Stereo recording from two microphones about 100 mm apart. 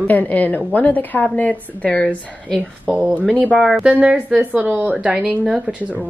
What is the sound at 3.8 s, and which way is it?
A woman's voice, 10° right (ahead or behind).